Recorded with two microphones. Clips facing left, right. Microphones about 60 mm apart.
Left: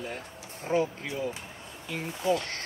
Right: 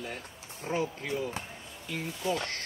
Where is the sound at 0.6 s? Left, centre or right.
Left.